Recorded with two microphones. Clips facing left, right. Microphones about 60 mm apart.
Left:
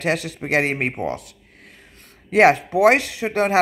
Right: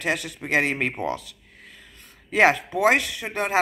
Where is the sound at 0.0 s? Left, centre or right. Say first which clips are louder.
Left 4 dB; left.